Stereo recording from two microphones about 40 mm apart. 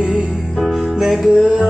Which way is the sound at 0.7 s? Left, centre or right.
Centre.